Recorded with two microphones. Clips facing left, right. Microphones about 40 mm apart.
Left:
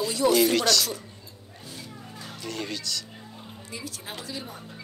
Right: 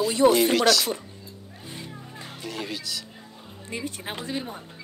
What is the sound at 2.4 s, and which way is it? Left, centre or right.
Speech, centre.